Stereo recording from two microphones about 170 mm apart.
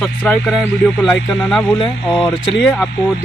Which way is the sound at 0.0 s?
10° left (ahead or behind).